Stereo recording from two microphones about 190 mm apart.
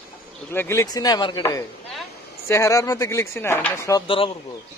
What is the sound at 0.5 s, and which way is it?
A man's voice, 10° left (ahead or behind).